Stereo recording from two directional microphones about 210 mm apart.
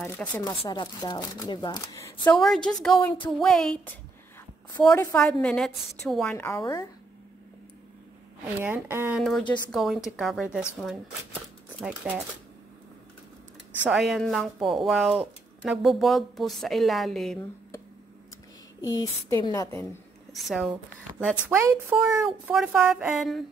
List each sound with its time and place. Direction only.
0.2 s speech: 5° left (ahead or behind)
0.6 s speech: 20° left (ahead or behind)
8.5 s speech: 10° right (ahead or behind)
9.2 s speech: 5° left (ahead or behind)
13.8 s speech: centre (ahead or behind)
18.9 s speech: 15° left (ahead or behind)
20.3 s speech: centre (ahead or behind)